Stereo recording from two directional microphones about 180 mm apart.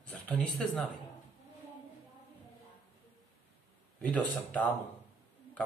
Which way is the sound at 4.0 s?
10° left (ahead or behind).